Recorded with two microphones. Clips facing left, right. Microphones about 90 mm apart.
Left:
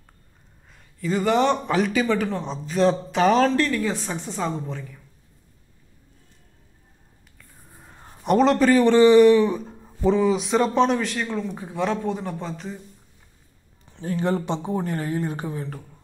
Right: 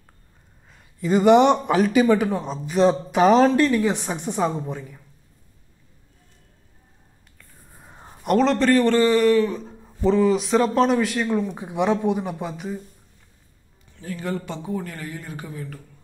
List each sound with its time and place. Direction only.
0.9 s a man's voice: 20° right (ahead or behind)
7.8 s a sound: 10° right (ahead or behind)
8.3 s a man's voice: 5° left (ahead or behind)
9.7 s a man's voice: 5° left (ahead or behind)
13.9 s speech: 30° left (ahead or behind)